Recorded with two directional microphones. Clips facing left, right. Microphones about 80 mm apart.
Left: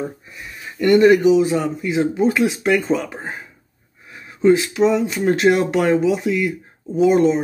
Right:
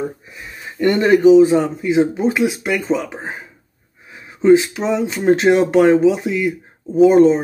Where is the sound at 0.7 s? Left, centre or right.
Right.